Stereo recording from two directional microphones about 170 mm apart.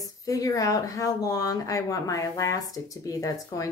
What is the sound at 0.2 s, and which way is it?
Speech, 20° left (ahead or behind).